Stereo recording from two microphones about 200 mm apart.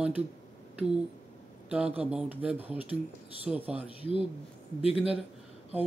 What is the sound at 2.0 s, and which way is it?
A man's voice, 5° right (ahead or behind).